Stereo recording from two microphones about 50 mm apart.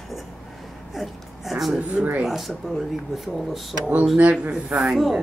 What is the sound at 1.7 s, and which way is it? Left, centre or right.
Speech, right.